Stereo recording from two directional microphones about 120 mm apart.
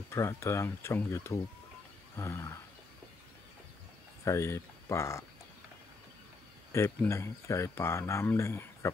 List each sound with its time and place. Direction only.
0.1 s speech: 20° left (ahead or behind)
4.2 s speech: 25° left (ahead or behind)
6.7 s speech: 25° left (ahead or behind)